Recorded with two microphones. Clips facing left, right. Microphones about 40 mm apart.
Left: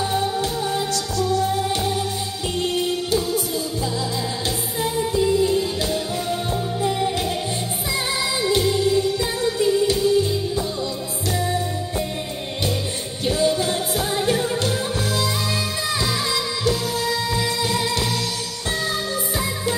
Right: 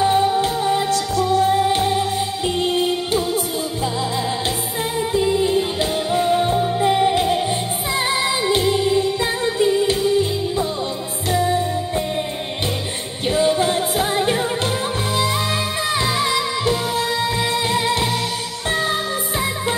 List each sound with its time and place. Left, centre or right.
0.0 s music: right
5.1 s music: right
11.3 s music: right
13.3 s music: right